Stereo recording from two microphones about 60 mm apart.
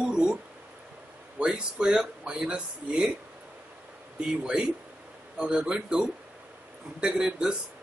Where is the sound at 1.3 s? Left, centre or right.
Centre.